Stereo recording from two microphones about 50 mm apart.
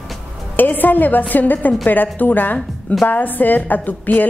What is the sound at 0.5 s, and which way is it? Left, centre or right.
A woman's voice, left.